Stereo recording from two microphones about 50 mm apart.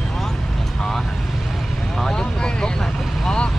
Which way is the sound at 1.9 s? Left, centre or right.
Centre.